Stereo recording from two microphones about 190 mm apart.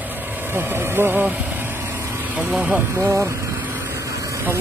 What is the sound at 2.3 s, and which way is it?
Speech, 5° right (ahead or behind).